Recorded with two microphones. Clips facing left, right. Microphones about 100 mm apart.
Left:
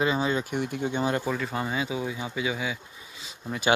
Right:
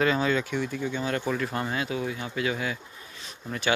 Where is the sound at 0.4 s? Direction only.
50° left (ahead or behind).